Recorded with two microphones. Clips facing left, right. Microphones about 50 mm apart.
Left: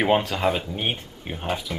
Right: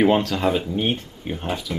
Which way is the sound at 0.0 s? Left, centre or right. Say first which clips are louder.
Right 2 dB; centre.